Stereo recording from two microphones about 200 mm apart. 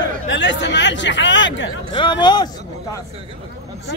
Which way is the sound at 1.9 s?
25° left (ahead or behind).